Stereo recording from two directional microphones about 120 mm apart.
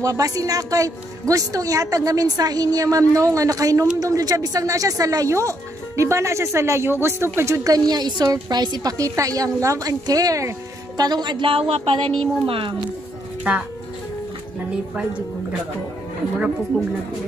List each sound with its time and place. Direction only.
0.0 s a woman's voice: 30° right (ahead or behind)
11.7 s a sound: 55° right (ahead or behind)
13.5 s speech: 10° right (ahead or behind)